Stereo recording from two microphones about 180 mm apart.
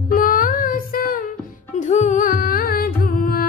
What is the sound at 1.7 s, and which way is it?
Music, 40° left (ahead or behind).